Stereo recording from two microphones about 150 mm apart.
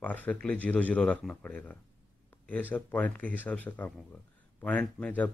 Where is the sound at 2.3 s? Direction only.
10° left (ahead or behind).